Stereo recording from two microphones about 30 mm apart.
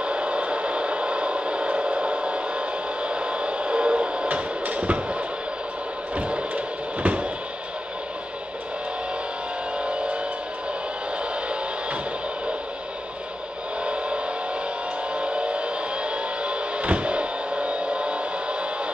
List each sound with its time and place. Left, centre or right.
0.0 s a sound: right
4.6 s basketball bounce: right
6.1 s music: right
9.8 s music: right
13.8 s vehicle: right
15.1 s music: right